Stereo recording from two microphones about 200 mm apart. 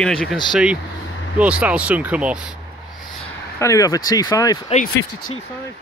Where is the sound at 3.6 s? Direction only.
15° left (ahead or behind).